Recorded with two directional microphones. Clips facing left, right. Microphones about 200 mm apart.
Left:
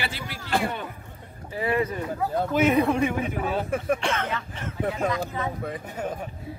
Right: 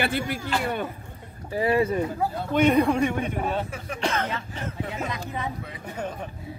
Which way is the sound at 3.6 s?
55° left (ahead or behind).